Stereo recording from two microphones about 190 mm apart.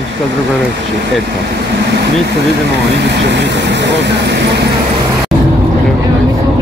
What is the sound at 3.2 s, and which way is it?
Speech, 65° right (ahead or behind).